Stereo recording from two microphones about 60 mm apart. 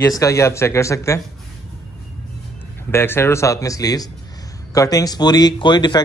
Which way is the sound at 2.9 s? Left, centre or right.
Left.